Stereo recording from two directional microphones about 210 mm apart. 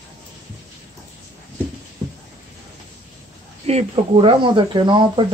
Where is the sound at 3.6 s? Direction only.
30° right (ahead or behind).